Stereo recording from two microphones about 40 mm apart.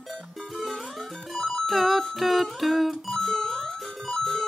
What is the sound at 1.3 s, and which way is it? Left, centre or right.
Music, centre.